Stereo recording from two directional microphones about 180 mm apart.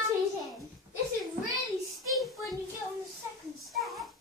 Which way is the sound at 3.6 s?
Centre (ahead or behind).